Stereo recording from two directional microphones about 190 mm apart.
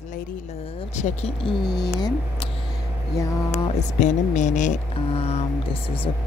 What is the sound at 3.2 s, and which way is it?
Speech, 15° left (ahead or behind).